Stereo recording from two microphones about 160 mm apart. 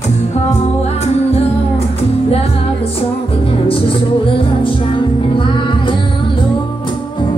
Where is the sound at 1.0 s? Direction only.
40° left (ahead or behind).